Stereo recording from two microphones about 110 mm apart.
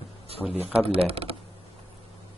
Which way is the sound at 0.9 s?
60° right (ahead or behind).